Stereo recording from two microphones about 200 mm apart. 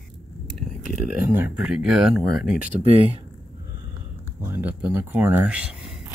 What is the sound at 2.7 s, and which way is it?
Speech, 30° right (ahead or behind).